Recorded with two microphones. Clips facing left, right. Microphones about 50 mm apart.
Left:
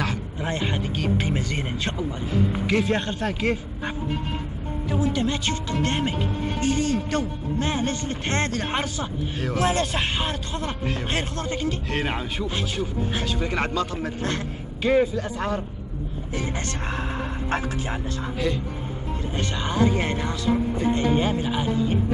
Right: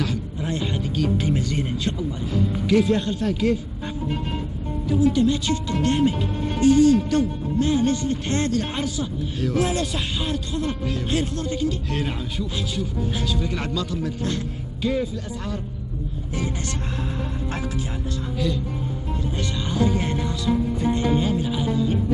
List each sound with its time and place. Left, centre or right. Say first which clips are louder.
0.0 s speech: right 1 dB; left